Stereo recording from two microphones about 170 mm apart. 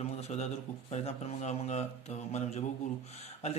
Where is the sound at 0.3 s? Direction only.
40° left (ahead or behind).